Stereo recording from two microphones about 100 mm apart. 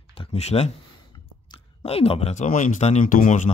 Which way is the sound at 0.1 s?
85° left.